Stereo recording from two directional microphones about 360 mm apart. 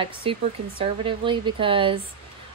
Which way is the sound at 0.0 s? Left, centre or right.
Centre.